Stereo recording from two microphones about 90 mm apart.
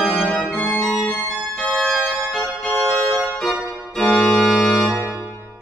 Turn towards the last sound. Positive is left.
turn(degrees=-5)  # may be behind; listen again after turning